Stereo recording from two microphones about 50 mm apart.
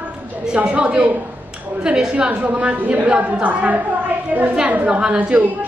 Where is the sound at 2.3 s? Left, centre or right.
Right.